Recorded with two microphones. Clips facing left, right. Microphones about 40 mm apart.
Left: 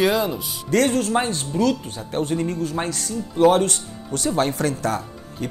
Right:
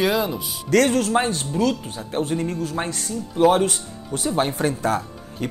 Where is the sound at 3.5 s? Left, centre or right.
Right.